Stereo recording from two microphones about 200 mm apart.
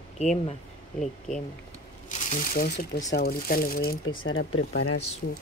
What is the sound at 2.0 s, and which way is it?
Speech, 40° left (ahead or behind).